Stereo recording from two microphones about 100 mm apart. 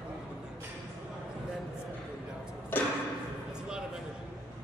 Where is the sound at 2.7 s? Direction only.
20° left (ahead or behind).